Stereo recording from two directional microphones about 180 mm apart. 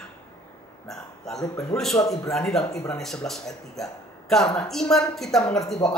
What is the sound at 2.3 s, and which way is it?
A woman's voice, 5° left (ahead or behind).